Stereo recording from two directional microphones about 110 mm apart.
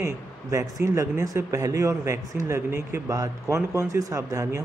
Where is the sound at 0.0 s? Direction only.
25° right (ahead or behind).